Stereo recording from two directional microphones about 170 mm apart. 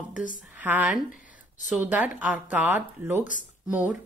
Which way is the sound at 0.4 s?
5° right (ahead or behind).